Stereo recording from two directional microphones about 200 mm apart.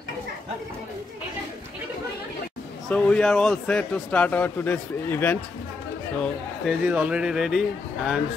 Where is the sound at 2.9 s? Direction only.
5° left (ahead or behind).